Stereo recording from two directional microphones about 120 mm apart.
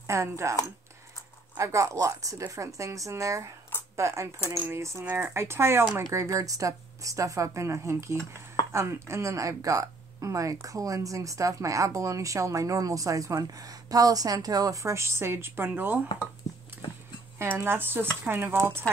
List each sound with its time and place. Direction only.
0.0 s speech: 25° right (ahead or behind)
1.6 s speech: 25° right (ahead or behind)
17.4 s speech: 20° right (ahead or behind)